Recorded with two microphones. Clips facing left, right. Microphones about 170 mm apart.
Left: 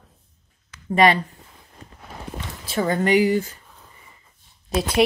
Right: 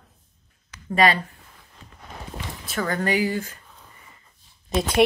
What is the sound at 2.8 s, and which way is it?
Speech, 20° left (ahead or behind).